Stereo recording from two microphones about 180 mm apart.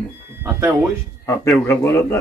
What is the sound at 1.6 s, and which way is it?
Speech, 15° left (ahead or behind).